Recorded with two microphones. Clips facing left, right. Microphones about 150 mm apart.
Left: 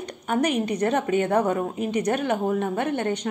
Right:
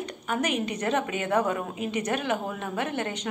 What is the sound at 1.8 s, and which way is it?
Speech, 45° left (ahead or behind).